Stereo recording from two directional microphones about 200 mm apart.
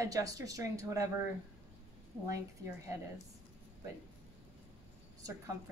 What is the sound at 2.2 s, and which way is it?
Speech, 15° right (ahead or behind).